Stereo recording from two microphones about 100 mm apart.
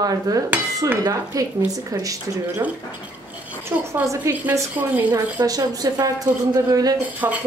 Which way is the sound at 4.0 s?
30° right (ahead or behind).